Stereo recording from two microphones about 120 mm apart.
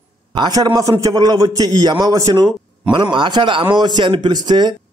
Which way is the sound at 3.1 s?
45° right (ahead or behind).